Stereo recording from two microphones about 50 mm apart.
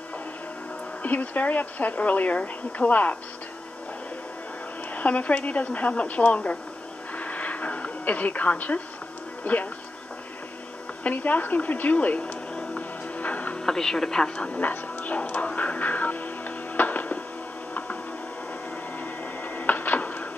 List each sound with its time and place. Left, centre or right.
1.0 s speech: left
4.9 s speech: left
7.2 s a sound: left
9.4 s speech: left
11.1 s a woman's voice: left
12.5 s music: left
13.7 s a woman's voice: centre
14.5 s music: left
19.4 s printer: left